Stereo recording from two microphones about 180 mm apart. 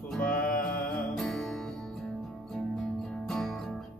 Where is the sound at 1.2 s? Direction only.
5° left (ahead or behind).